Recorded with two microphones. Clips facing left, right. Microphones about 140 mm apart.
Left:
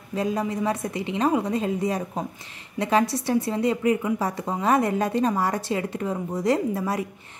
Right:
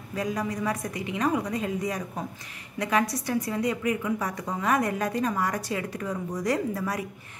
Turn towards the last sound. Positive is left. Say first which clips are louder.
# left 4 dB
turn(degrees=25)  # may be behind; listen again after turning